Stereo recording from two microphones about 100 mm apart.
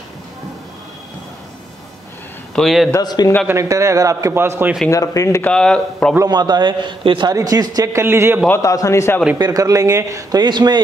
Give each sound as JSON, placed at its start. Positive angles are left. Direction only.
{"t": 2.5, "sound": "a man's voice", "side_deg": 0}
{"t": 3.0, "sound": "speech", "side_deg": 45}
{"t": 3.4, "sound": "a man's voice", "side_deg": -30}
{"t": 4.9, "sound": "speech", "side_deg": 35}
{"t": 5.4, "sound": "speech", "side_deg": 10}
{"t": 6.2, "sound": "a man's voice", "side_deg": -45}
{"t": 7.2, "sound": "a man's voice", "side_deg": -40}
{"t": 8.0, "sound": "a man's voice", "side_deg": -25}
{"t": 8.5, "sound": "a man's voice", "side_deg": 30}
{"t": 9.4, "sound": "a man's voice", "side_deg": -35}
{"t": 10.4, "sound": "a man's voice", "side_deg": -45}